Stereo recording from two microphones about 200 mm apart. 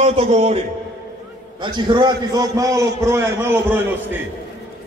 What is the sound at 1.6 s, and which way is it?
A man's voice, 20° right (ahead or behind).